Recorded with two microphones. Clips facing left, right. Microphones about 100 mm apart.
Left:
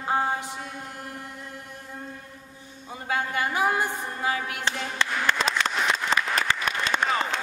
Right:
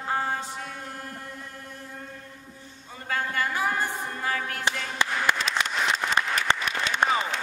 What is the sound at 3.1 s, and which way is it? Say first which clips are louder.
Music: left 1 dB; 15° left (ahead or behind).